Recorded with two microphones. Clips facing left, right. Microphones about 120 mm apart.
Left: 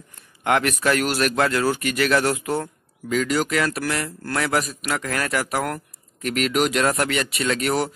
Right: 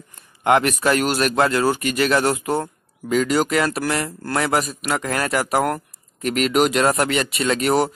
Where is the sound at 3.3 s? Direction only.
30° right (ahead or behind).